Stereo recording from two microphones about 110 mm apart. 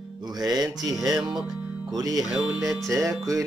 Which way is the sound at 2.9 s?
30° right (ahead or behind).